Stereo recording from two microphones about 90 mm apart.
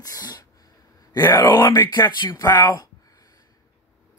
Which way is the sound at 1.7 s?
55° left (ahead or behind).